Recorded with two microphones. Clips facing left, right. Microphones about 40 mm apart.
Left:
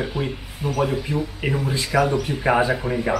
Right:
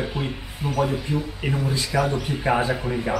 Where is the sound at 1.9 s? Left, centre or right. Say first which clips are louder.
Left 4 dB; left.